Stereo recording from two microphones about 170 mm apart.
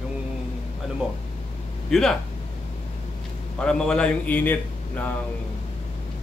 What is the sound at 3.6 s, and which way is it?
Speech, 5° left (ahead or behind).